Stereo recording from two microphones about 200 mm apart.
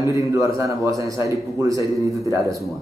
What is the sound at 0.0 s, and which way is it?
Speech, 15° right (ahead or behind).